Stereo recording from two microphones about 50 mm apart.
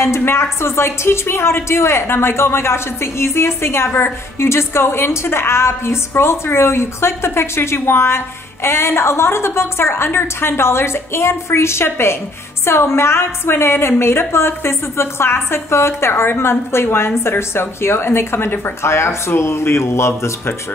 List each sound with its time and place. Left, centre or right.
0.0 s a woman's voice: left